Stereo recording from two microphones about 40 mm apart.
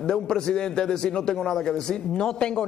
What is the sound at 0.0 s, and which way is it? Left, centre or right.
A man's voice, centre.